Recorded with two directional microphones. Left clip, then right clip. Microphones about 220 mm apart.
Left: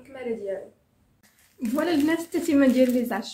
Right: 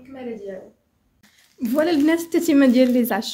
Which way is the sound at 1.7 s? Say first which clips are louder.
Right 5 dB; 45° right (ahead or behind).